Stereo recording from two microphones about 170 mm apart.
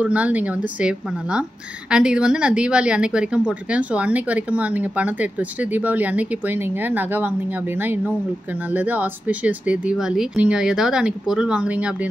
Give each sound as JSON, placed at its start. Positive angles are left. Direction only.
{"t": 0.0, "sound": "speech", "side_deg": -10}